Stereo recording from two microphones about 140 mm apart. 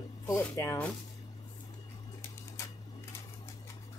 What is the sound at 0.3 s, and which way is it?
Speech, 20° left (ahead or behind).